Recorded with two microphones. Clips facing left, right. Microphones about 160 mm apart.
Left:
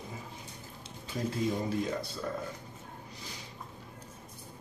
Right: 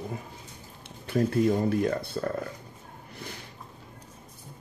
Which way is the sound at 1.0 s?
60° right (ahead or behind).